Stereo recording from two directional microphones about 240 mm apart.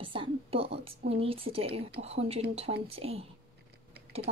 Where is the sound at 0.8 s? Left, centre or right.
Right.